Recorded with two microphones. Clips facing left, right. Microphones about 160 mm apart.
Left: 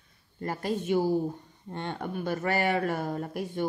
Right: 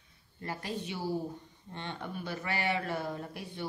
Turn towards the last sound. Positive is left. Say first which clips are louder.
# left 8 dB
turn(degrees=50)  # may be behind; listen again after turning